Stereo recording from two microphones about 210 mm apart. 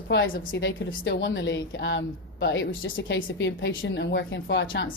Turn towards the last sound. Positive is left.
turn(degrees=65)  # may be behind; listen again after turning